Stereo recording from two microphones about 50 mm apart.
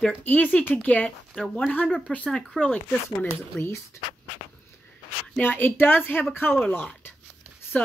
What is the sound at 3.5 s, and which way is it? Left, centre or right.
Speech, centre.